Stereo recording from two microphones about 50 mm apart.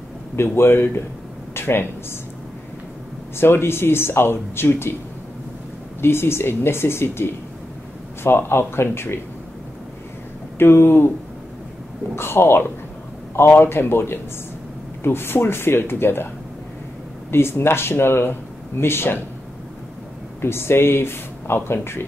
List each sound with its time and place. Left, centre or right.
0.4 s speech: left
1.5 s a sound: left
3.3 s speech: left
5.9 s speech: left
10.6 s speech: left
12.2 s speech: left
17.3 s speech: left
20.3 s speech: left